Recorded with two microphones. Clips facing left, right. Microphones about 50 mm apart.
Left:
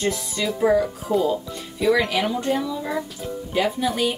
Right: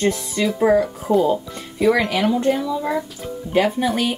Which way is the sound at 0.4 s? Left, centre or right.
Centre.